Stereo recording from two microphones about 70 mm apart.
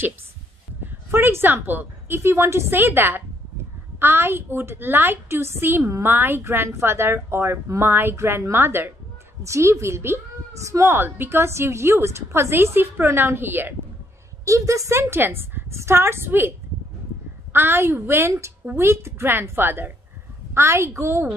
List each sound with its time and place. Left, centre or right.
1.1 s a woman's voice: right
10.9 s a woman's voice: right
14.4 s a woman's voice: right